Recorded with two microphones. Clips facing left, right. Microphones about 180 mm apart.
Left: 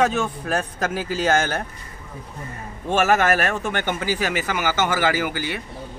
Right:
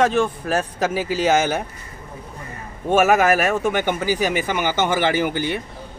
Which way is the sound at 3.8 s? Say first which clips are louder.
Right 3 dB; 15° right (ahead or behind).